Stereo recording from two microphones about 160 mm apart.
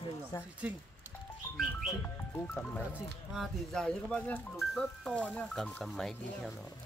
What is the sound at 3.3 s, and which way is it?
Speech, centre (ahead or behind).